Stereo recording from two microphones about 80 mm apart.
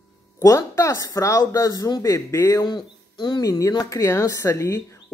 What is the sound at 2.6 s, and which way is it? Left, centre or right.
Speech, left.